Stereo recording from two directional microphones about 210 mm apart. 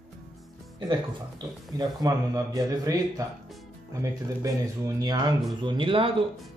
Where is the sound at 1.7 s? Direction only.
15° right (ahead or behind).